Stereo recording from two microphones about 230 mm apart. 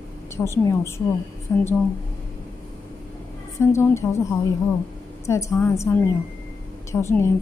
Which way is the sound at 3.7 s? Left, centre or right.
Centre.